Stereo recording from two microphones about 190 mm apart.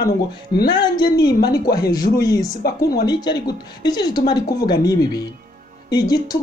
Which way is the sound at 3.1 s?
20° left (ahead or behind).